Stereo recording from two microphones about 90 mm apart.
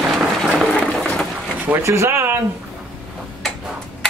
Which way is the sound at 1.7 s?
30° right (ahead or behind).